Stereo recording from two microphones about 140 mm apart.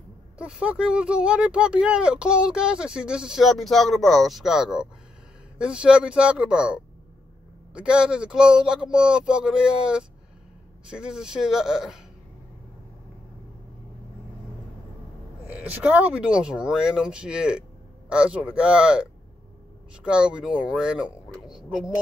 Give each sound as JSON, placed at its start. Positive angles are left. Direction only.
{"t": 0.4, "sound": "speech", "side_deg": -5}
{"t": 15.4, "sound": "speech", "side_deg": -10}